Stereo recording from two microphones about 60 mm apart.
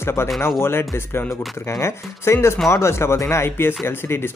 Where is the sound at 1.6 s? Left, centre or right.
Left.